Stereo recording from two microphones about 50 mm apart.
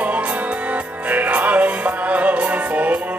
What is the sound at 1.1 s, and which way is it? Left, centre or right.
Music, right.